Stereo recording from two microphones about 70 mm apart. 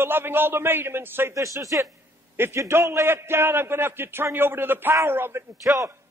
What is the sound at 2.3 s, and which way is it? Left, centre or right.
A man's voice, right.